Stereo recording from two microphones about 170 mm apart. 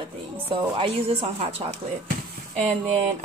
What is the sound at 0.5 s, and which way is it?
A woman's voice, 35° right (ahead or behind).